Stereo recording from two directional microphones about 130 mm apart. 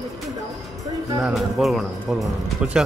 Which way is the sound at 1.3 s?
Centre (ahead or behind).